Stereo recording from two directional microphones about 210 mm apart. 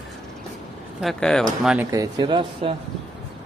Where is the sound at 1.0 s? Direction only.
Centre (ahead or behind).